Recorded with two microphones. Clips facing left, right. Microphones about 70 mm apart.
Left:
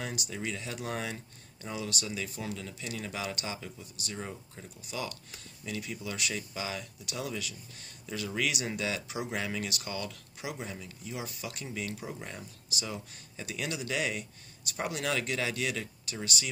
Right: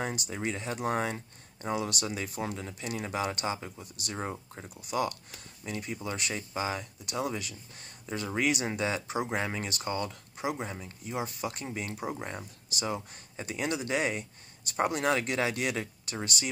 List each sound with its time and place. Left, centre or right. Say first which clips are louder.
0.0 s speech: right 3 dB; right
4.2 s speech: right 7 dB; right
4.6 s speech: right 7 dB; right
11.1 s speech: right 6 dB; right